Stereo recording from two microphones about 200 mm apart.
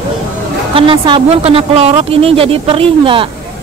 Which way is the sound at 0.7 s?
25° right (ahead or behind).